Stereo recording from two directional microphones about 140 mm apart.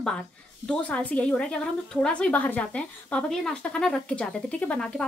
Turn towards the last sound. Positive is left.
turn(degrees=5)  # may be behind; listen again after turning